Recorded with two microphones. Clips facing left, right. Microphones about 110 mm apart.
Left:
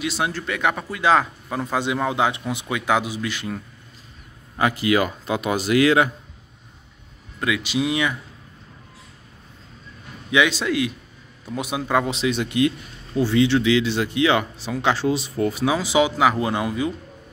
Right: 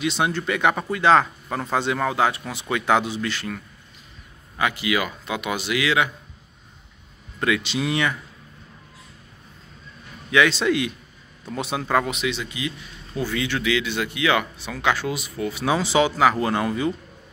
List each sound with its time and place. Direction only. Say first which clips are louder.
0.0 s speech: right 2 dB; 5° left (ahead or behind)
4.6 s speech: left 4 dB; 35° left (ahead or behind)
7.3 s speech: even; 5° left (ahead or behind)
10.3 s speech: right 1 dB; 10° left (ahead or behind)
12.3 s a man's voice: left 8 dB; 55° left (ahead or behind)
13.1 s speech: left 8 dB; 25° left (ahead or behind)
15.6 s speech: right 1 dB; 10° left (ahead or behind)